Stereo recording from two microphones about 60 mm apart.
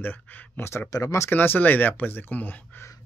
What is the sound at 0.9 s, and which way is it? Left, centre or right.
Speech, left.